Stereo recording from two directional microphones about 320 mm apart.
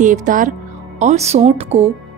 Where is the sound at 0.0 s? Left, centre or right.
Right.